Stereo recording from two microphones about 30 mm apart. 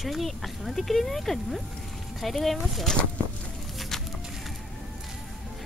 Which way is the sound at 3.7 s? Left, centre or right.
Centre.